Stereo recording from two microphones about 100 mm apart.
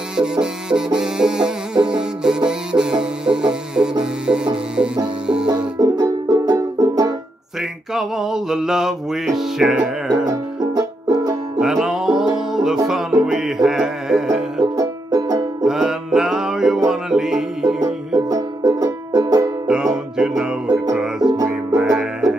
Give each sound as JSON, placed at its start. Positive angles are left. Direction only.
{"t": 0.1, "sound": "music", "side_deg": -5}
{"t": 5.0, "sound": "banjo", "side_deg": -10}
{"t": 5.8, "sound": "music", "side_deg": -40}
{"t": 7.9, "sound": "music", "side_deg": -5}
{"t": 10.2, "sound": "music", "side_deg": -40}
{"t": 11.6, "sound": "music", "side_deg": -5}
{"t": 14.6, "sound": "music", "side_deg": -40}
{"t": 15.6, "sound": "music", "side_deg": -5}
{"t": 18.3, "sound": "music", "side_deg": -40}
{"t": 19.7, "sound": "music", "side_deg": -5}
{"t": 21.2, "sound": "music", "side_deg": -45}
{"t": 21.7, "sound": "music", "side_deg": -5}